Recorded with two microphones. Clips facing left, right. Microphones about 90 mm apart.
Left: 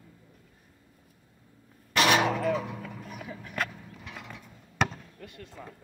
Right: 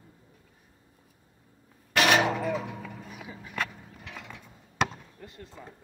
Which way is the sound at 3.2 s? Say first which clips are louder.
Even; centre (ahead or behind).